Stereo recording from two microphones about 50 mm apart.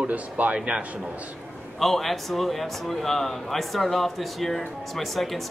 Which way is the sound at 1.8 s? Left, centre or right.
Centre.